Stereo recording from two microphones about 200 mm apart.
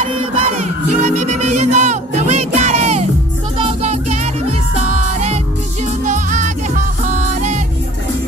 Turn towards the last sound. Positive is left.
turn(degrees=-35)  # may be behind; listen again after turning